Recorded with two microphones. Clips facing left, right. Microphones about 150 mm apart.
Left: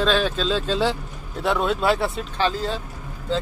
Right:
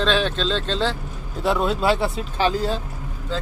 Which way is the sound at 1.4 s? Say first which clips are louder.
Right 1 dB; centre (ahead or behind).